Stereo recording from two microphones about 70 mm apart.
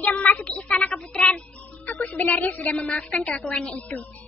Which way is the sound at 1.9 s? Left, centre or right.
Left.